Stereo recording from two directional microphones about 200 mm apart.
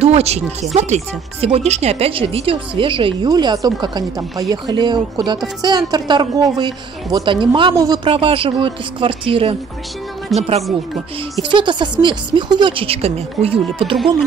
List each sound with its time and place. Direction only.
0.0 s speech: 30° right (ahead or behind)
10.3 s speech: centre (ahead or behind)
11.5 s speech: 25° right (ahead or behind)